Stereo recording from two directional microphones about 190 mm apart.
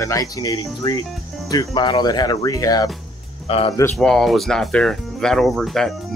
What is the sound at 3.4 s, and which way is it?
Speech, 30° left (ahead or behind).